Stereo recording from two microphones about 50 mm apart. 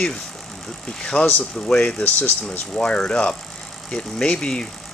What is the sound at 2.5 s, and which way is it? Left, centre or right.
Speech, left.